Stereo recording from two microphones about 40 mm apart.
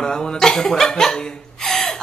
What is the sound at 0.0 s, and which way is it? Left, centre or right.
Speech, centre.